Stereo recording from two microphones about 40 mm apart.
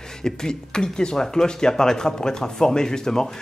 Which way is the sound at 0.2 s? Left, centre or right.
Centre.